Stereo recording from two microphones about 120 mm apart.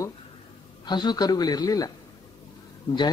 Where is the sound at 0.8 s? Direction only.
35° left (ahead or behind).